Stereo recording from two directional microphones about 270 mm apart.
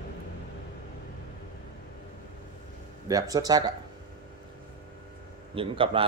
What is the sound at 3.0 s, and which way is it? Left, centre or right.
Speech, centre.